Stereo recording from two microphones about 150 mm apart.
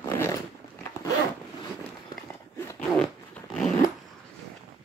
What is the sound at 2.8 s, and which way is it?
Zipper, 5° left (ahead or behind).